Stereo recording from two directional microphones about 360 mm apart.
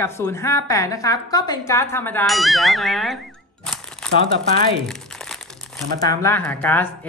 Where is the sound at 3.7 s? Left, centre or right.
Centre.